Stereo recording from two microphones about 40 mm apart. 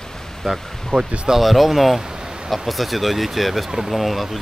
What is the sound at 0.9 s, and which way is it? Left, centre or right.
Speech, left.